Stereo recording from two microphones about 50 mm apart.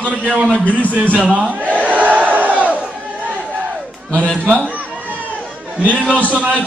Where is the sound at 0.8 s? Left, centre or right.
Right.